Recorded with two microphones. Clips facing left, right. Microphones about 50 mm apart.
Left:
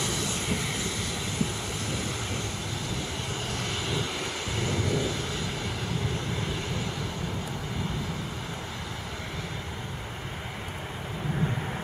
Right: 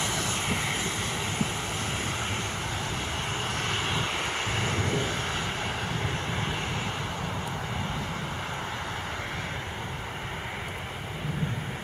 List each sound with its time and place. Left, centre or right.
0.0 s vehicle: right
3.5 s vehicle: right